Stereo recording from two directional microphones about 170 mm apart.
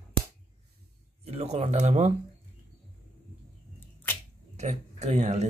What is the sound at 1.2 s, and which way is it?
Speech, 40° right (ahead or behind).